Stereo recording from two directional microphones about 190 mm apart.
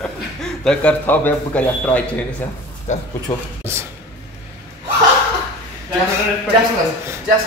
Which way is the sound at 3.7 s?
15° right (ahead or behind).